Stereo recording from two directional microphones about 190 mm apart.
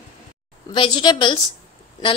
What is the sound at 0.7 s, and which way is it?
Speech, 25° left (ahead or behind).